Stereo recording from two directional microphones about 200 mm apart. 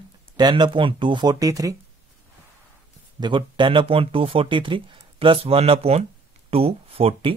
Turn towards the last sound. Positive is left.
turn(degrees=-30)  # may be behind; listen again after turning